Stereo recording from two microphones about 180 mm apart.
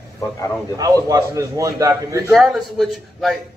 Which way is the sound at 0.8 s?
20° right (ahead or behind).